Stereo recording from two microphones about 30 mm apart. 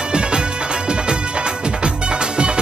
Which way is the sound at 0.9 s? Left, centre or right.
Right.